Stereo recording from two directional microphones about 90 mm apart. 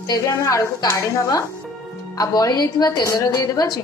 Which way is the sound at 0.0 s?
45° left (ahead or behind).